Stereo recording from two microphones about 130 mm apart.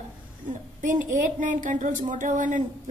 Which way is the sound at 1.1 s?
85° right.